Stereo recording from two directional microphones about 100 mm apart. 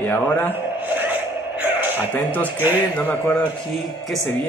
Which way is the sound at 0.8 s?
15° right (ahead or behind).